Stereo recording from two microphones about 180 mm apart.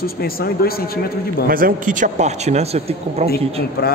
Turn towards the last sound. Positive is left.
turn(degrees=60)  # may be behind; listen again after turning